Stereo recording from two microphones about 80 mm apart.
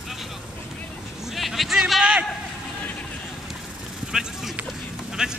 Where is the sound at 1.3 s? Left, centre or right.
Centre.